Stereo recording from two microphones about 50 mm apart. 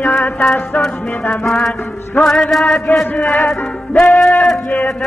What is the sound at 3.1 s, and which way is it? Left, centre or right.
Music, left.